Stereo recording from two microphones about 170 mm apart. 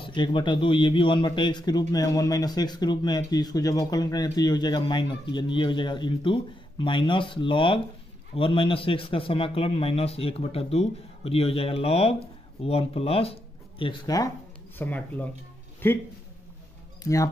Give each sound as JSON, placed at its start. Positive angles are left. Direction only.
{"t": 0.0, "sound": "a man's voice", "side_deg": 30}
{"t": 14.8, "sound": "speech", "side_deg": 10}
{"t": 17.0, "sound": "speech", "side_deg": 20}